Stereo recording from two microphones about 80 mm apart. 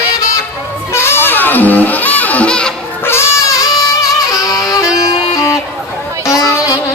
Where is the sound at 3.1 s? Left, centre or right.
Left.